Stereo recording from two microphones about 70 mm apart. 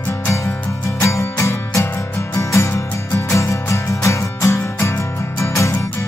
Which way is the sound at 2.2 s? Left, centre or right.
Left.